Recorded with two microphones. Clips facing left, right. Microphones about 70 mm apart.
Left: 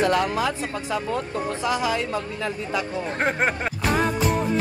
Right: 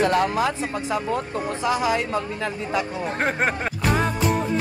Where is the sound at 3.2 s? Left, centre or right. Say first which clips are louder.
Even; centre.